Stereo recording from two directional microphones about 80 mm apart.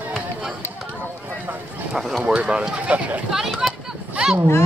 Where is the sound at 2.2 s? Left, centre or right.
Centre.